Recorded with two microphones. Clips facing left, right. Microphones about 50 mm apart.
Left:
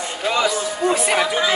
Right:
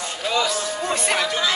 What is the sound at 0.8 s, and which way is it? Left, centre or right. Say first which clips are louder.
Speech: left 5 dB; centre.